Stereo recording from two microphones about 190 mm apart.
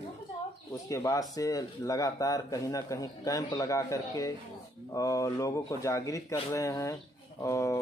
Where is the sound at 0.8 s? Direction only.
15° left (ahead or behind).